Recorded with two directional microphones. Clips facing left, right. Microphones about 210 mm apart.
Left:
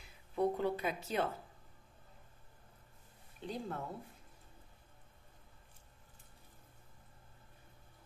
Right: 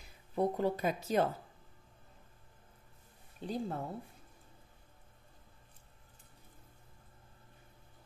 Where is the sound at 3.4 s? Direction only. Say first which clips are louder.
Right 4 dB; 40° right (ahead or behind).